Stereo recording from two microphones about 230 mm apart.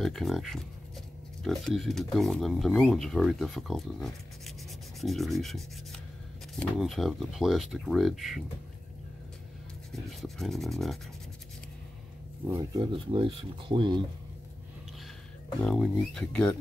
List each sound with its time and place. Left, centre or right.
0.0 s speech: centre
10.0 s speech: centre
12.4 s speech: centre
15.6 s speech: centre